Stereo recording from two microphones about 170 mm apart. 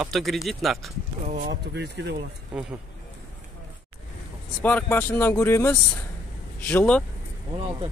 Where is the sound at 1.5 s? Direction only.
80° right.